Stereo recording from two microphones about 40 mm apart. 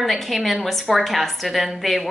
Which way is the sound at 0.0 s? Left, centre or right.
Centre.